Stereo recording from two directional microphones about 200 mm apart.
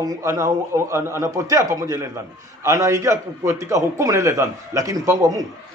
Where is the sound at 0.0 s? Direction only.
15° right (ahead or behind).